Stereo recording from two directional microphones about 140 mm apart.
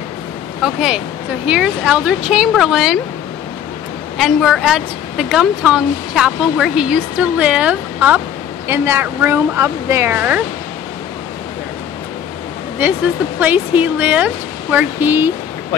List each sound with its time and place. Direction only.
0.6 s a woman's voice: 5° right (ahead or behind)
4.2 s a woman's voice: centre (ahead or behind)
13.4 s speech: 10° right (ahead or behind)